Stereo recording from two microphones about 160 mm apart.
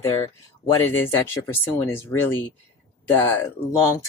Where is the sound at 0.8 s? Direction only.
15° left (ahead or behind).